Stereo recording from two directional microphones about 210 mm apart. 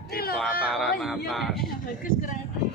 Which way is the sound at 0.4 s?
Centre (ahead or behind).